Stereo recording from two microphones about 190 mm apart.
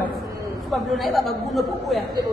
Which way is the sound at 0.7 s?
Centre (ahead or behind).